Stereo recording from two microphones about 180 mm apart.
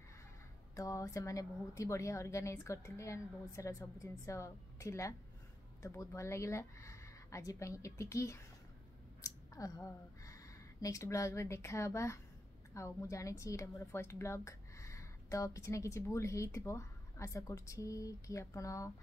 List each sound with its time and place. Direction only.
0.7 s a woman's voice: 15° left (ahead or behind)